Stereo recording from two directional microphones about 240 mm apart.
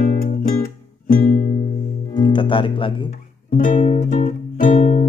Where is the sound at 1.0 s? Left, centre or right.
Left.